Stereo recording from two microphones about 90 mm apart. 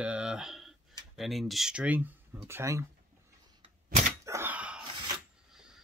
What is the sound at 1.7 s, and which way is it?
Speech, 15° right (ahead or behind).